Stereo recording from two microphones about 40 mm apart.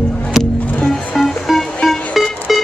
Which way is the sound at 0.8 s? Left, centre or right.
Centre.